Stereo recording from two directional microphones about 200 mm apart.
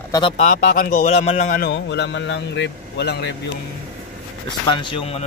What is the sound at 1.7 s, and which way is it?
A man's voice, 60° left (ahead or behind).